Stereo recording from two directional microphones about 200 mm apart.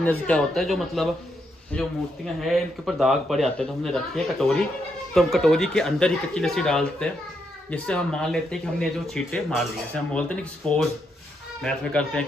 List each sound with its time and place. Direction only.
0.0 s speech: 5° left (ahead or behind)